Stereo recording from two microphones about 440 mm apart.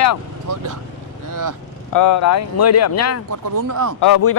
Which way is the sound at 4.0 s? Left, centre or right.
Left.